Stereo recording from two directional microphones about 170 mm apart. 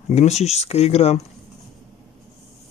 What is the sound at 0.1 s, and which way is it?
Speech, 40° left (ahead or behind).